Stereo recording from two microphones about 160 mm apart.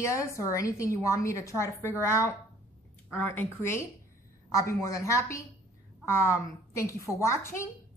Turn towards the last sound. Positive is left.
turn(degrees=15)  # may be behind; listen again after turning